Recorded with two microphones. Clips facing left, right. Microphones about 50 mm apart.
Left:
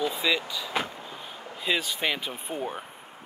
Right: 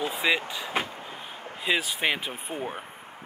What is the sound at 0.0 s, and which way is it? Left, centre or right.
Vehicle, right.